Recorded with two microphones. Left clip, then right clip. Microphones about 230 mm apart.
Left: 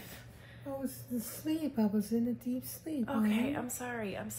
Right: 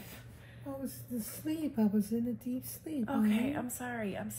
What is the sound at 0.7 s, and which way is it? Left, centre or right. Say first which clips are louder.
Speech: left 2 dB; centre.